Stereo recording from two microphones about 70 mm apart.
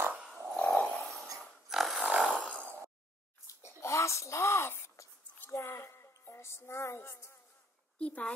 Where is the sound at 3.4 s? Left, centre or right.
Left.